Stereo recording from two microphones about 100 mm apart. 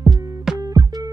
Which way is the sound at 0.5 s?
35° right (ahead or behind).